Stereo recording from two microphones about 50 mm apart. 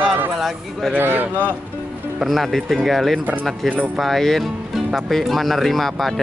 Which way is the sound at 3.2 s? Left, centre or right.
Right.